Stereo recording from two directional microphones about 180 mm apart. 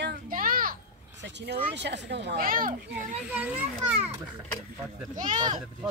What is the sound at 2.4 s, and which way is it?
Speech, 50° right (ahead or behind).